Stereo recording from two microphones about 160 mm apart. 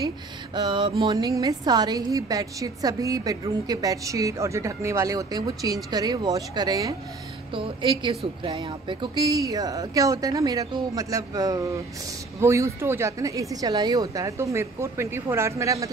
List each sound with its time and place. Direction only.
0.6 s a woman's voice: 30° right (ahead or behind)